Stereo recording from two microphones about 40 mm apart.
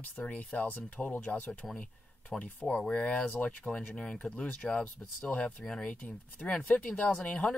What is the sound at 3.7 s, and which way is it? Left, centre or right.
Speech, centre.